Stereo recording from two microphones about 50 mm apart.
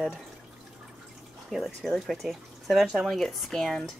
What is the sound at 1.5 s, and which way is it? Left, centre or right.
Speech, centre.